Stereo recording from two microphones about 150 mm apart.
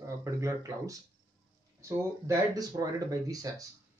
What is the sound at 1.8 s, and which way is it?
Speech, 20° right (ahead or behind).